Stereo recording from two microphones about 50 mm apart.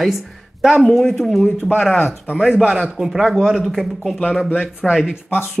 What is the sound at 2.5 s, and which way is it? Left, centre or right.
Speech, right.